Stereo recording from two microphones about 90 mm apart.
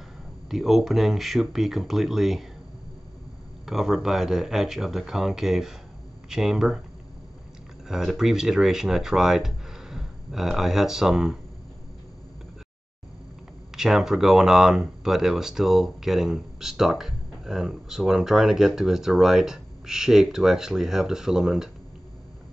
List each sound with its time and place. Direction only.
0.5 s speech: 5° right (ahead or behind)
3.6 s speech: 5° right (ahead or behind)
7.9 s speech: 5° right (ahead or behind)
13.7 s speech: 5° right (ahead or behind)